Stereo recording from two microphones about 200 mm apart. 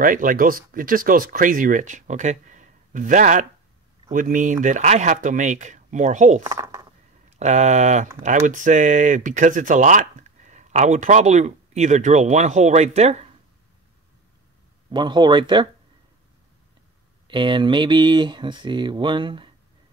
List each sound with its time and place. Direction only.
0.0 s speech: 45° right (ahead or behind)
6.4 s speech: 15° right (ahead or behind)
7.2 s speech: 35° right (ahead or behind)
14.9 s speech: 20° right (ahead or behind)
17.3 s speech: 25° right (ahead or behind)